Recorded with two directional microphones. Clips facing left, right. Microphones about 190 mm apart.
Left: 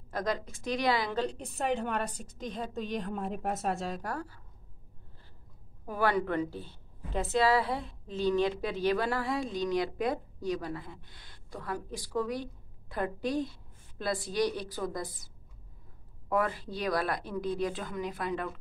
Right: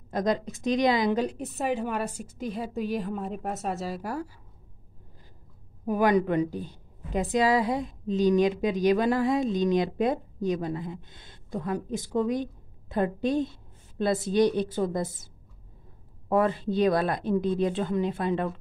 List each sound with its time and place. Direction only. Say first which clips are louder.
0.1 s a woman's voice: right 6 dB; 20° right (ahead or behind)
5.9 s a woman's voice: right 6 dB; 15° right (ahead or behind)
16.3 s a woman's voice: right 6 dB; 25° right (ahead or behind)